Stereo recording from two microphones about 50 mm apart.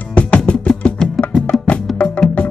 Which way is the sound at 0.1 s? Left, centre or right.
Left.